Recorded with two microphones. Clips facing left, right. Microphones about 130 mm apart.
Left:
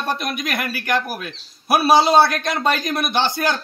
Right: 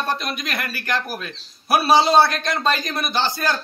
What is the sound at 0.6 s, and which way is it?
A man's voice, 10° left (ahead or behind).